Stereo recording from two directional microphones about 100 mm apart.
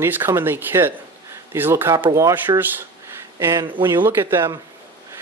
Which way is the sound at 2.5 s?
45° right (ahead or behind).